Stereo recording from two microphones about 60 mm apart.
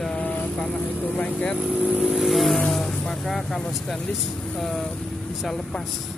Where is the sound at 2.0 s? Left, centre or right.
Centre.